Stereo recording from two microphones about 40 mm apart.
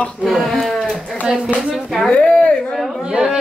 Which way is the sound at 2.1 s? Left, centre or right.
Left.